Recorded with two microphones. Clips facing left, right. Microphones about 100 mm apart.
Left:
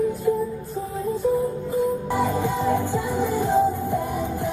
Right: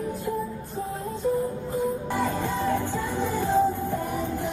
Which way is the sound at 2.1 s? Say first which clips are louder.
Left 4 dB; 15° left (ahead or behind).